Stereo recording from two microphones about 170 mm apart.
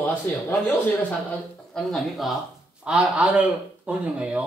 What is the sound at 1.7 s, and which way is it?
A woman's voice, centre (ahead or behind).